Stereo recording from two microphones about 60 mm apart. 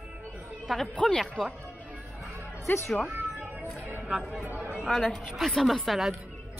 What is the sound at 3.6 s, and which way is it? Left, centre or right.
Speech, right.